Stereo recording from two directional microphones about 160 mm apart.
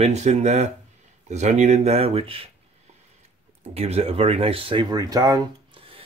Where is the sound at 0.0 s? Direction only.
45° right (ahead or behind).